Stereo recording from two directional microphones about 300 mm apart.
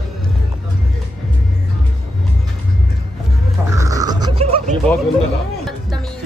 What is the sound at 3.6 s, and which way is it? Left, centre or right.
Roaring cats, centre.